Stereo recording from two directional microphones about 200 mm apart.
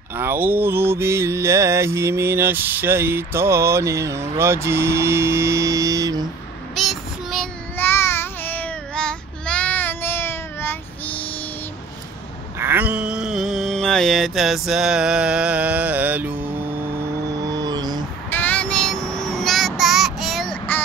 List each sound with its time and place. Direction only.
0.1 s mantra: 10° right (ahead or behind)
6.7 s child singing: centre (ahead or behind)
7.7 s child singing: 10° left (ahead or behind)
12.5 s a sound: 10° right (ahead or behind)
17.5 s music: 20° right (ahead or behind)
18.3 s child singing: 10° left (ahead or behind)